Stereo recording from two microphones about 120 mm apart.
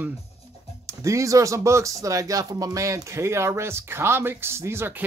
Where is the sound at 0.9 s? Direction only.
25° right (ahead or behind).